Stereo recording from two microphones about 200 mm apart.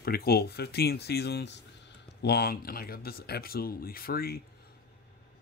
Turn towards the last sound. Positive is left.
turn(degrees=50)  # may be behind; listen again after turning